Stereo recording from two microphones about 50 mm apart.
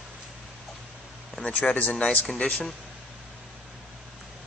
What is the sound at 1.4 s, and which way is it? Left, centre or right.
Speech, left.